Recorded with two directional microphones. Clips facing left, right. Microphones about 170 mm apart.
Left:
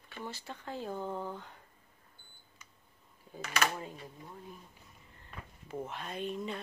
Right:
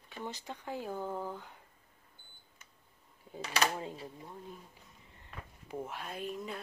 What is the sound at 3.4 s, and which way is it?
Speech, 30° right (ahead or behind).